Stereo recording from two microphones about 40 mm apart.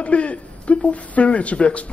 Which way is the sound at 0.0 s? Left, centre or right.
Left.